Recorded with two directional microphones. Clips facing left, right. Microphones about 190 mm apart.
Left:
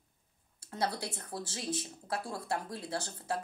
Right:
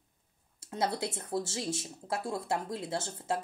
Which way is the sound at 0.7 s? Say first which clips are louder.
Right 3 dB; 25° right (ahead or behind).